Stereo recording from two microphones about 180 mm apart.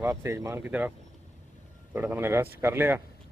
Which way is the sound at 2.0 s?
10° right (ahead or behind).